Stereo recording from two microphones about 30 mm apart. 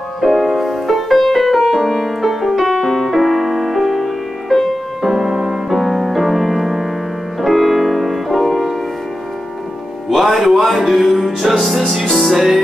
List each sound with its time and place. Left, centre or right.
0.2 s music: centre
10.0 s music: centre